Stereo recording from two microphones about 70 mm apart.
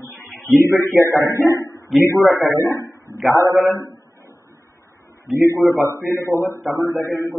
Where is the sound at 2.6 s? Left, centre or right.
Left.